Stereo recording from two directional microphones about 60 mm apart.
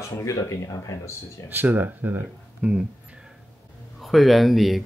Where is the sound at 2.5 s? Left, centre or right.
Centre.